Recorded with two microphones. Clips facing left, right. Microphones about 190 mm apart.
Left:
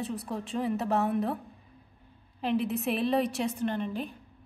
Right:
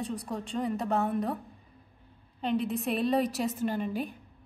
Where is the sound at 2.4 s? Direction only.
5° left (ahead or behind).